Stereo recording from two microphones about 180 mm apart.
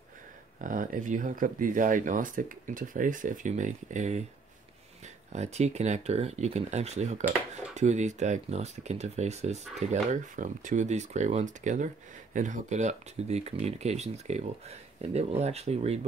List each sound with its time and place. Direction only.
0.6 s speech: 45° right (ahead or behind)
5.3 s speech: 40° right (ahead or behind)